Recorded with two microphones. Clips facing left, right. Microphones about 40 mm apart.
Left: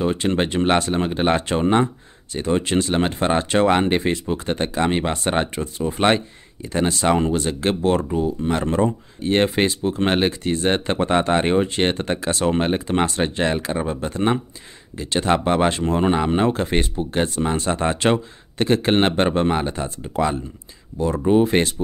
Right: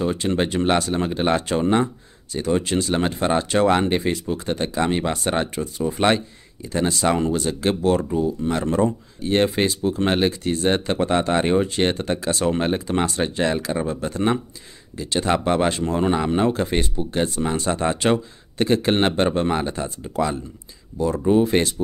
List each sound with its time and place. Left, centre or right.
0.0 s speech: left